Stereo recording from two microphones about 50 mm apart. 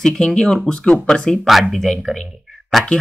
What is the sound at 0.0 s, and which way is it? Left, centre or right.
Speech, centre.